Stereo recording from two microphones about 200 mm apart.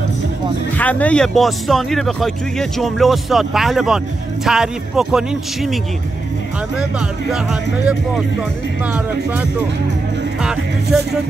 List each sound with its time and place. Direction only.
0.7 s speech: 5° left (ahead or behind)
6.8 s speech: 5° right (ahead or behind)